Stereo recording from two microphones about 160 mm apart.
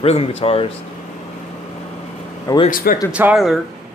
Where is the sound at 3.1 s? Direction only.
5° right (ahead or behind).